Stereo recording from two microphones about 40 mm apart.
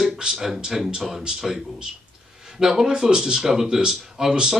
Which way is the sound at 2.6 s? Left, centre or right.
Centre.